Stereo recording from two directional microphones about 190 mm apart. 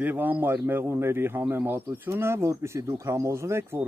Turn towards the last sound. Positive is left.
turn(degrees=-15)  # may be behind; listen again after turning